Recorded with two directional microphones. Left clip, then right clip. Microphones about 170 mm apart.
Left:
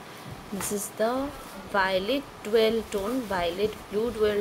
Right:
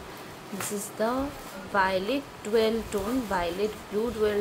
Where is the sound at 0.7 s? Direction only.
20° left (ahead or behind).